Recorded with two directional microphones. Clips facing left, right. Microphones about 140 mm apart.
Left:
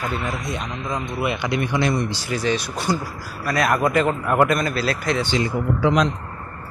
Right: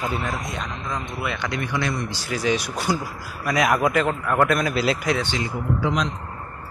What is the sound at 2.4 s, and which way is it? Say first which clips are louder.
Speech: even; 10° right (ahead or behind).